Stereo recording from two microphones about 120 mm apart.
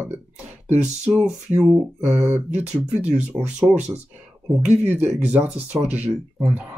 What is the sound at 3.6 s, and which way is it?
Speech, centre (ahead or behind).